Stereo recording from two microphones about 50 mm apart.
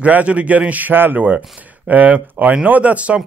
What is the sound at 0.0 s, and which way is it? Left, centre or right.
A man's voice, right.